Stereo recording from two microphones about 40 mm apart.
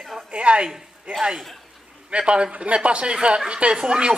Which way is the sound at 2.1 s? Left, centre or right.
Right.